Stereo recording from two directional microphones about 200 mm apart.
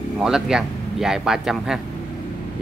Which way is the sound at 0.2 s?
5° right (ahead or behind).